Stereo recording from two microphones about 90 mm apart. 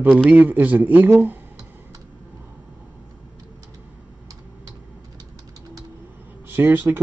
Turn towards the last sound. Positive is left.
turn(degrees=-20)  # may be behind; listen again after turning